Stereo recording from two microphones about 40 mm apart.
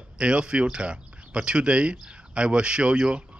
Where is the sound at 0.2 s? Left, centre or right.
Right.